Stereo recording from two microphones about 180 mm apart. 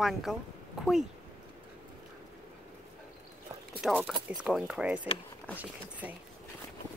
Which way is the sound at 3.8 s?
Centre (ahead or behind).